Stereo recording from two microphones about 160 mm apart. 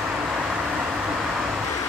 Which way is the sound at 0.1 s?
Centre (ahead or behind).